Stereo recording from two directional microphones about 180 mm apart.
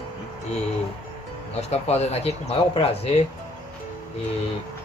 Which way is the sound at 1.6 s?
35° left (ahead or behind).